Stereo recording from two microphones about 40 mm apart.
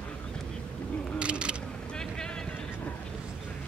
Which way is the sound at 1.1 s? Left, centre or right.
Right.